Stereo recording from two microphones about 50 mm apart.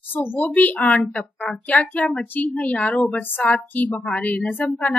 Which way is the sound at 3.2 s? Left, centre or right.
Left.